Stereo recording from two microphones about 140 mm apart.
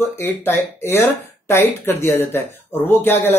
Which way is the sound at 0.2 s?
15° left (ahead or behind).